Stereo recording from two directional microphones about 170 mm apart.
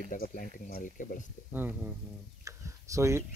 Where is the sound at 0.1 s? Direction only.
50° left (ahead or behind).